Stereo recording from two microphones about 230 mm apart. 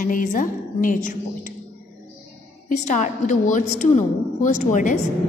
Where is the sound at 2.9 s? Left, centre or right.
Left.